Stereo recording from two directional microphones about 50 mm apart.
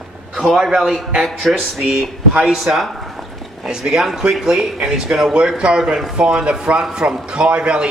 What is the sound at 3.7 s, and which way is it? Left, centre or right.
A man's voice, centre.